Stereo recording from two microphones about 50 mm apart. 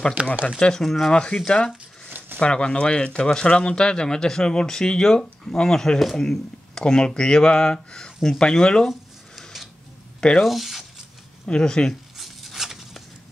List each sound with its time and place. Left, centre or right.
0.2 s speech: right
0.6 s speech: centre
0.8 s speech: centre
1.1 s speech: left
2.0 s a sound: right
2.3 s speech: left
10.4 s speech: centre
11.4 s speech: centre
11.9 s zipper: centre